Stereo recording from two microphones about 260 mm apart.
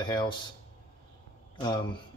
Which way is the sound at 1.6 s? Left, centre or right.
Centre.